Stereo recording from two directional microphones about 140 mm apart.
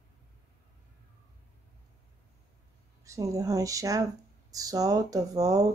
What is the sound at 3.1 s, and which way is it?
Speech, 25° right (ahead or behind).